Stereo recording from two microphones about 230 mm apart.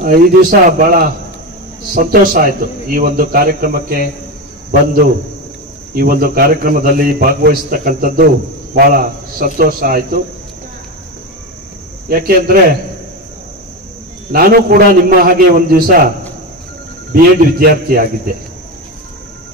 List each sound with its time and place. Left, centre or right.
0.0 s a man's voice: right
5.9 s a man's voice: right
12.1 s a man's voice: right
14.3 s a man's voice: right
17.1 s a man's voice: right